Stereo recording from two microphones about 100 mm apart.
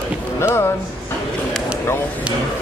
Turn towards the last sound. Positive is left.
turn(degrees=25)  # may be behind; listen again after turning